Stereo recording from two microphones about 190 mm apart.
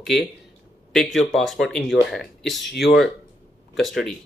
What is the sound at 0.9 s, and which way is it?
Speech, centre (ahead or behind).